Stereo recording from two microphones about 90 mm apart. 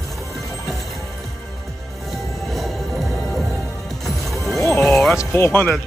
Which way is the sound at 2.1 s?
Centre (ahead or behind).